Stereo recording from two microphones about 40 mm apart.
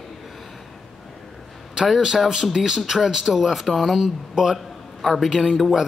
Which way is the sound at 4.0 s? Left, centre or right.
Centre.